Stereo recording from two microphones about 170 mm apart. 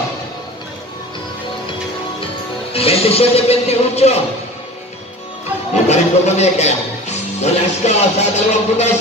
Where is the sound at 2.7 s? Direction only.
35° left (ahead or behind).